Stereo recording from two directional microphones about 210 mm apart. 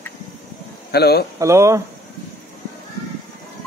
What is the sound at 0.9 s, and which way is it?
Speech, 50° left (ahead or behind).